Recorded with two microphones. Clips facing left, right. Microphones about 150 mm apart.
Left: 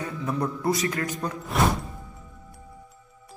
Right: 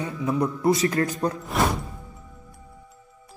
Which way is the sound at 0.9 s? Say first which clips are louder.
Right 5 dB; 40° right (ahead or behind).